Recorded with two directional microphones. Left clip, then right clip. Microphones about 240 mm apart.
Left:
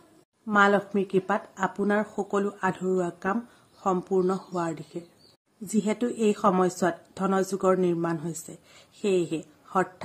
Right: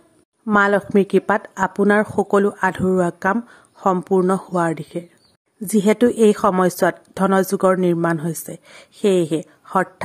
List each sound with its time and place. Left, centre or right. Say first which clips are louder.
0.5 s a woman's voice: right 5 dB; right